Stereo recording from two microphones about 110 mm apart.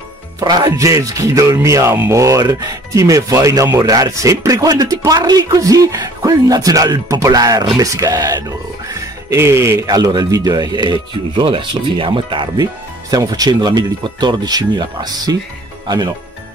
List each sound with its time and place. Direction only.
0.4 s speech: 40° right (ahead or behind)
13.1 s speech: 35° right (ahead or behind)